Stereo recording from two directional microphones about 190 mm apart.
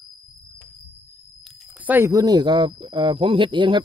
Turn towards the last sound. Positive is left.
turn(degrees=-25)  # may be behind; listen again after turning